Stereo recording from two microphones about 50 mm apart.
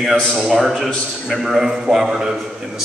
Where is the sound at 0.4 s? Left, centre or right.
Centre.